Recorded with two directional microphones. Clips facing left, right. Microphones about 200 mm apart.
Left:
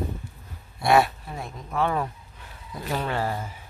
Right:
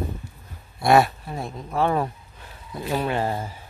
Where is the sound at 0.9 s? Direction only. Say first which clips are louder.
Right 2 dB; 40° right (ahead or behind).